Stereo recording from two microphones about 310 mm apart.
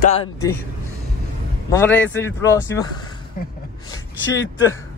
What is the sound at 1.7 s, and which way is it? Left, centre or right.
Speech, centre.